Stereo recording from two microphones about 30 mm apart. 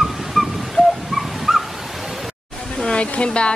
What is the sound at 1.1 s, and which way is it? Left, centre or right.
Dog, centre.